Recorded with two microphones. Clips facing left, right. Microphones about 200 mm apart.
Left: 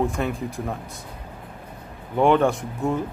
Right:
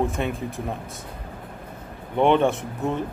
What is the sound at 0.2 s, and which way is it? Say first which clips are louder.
Speech: left 1 dB; 25° right (ahead or behind).